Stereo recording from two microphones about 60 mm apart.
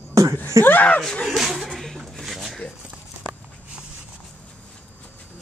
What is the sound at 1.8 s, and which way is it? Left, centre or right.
Rub, centre.